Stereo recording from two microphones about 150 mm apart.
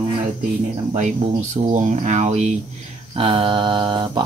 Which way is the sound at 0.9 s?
50° right (ahead or behind).